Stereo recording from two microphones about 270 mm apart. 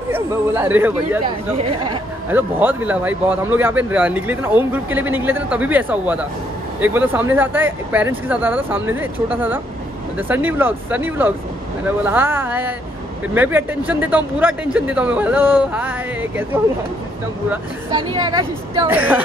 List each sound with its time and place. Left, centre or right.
0.1 s speech: centre
2.3 s speech: centre
17.5 s speech: centre